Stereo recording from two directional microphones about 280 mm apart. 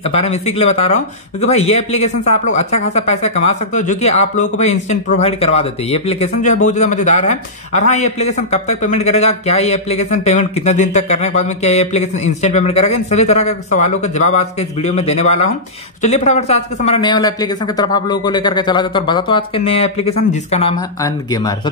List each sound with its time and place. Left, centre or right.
0.0 s speech: left